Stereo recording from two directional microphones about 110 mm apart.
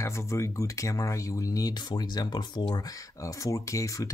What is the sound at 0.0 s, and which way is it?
Speech, 25° left (ahead or behind).